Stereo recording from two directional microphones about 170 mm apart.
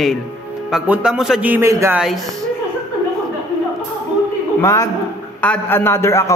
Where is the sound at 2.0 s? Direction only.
Centre (ahead or behind).